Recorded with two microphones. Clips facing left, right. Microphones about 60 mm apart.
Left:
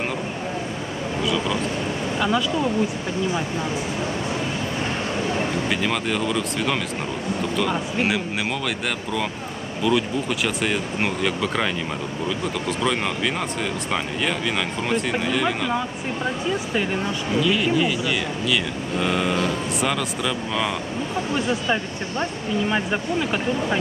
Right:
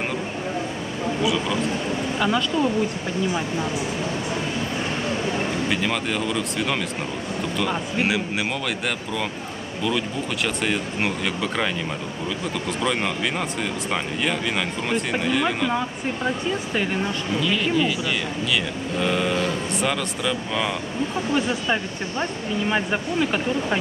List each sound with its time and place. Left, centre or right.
1.2 s a sound: centre
2.1 s speech: centre
5.7 s speech: centre